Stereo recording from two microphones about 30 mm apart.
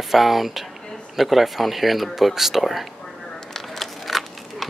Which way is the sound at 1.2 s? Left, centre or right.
Centre.